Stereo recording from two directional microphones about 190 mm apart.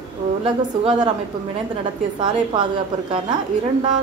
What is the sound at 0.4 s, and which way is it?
Speech, 30° right (ahead or behind).